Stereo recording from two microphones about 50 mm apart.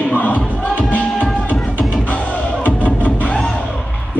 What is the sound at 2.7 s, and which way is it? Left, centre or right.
Music, left.